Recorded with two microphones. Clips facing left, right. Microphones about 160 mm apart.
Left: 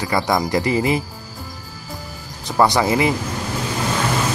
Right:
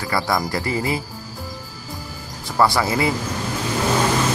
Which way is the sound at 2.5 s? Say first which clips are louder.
Left 2 dB; 20° left (ahead or behind).